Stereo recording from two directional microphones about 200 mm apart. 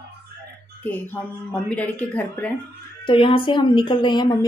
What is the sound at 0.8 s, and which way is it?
A woman's voice, 10° left (ahead or behind).